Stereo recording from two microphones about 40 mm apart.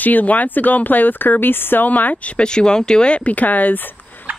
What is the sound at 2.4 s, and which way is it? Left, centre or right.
Speech, left.